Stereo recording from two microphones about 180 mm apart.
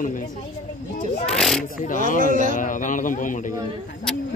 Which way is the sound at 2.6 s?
45° left (ahead or behind).